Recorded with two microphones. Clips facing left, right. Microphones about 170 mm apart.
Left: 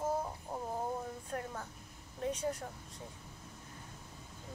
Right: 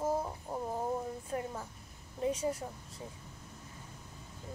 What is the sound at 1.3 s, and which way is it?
Speech, 10° right (ahead or behind).